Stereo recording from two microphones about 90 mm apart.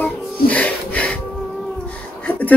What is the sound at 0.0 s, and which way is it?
Music, 15° left (ahead or behind).